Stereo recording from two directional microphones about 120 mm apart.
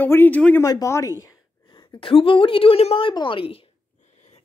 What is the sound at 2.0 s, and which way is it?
A woman's voice, 45° left (ahead or behind).